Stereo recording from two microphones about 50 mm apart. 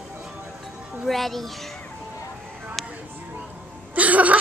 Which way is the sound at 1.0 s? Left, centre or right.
Centre.